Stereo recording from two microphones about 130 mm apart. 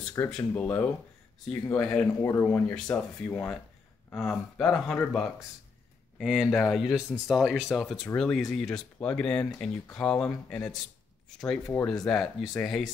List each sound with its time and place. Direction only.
0.3 s speech: 10° left (ahead or behind)
4.1 s speech: 5° left (ahead or behind)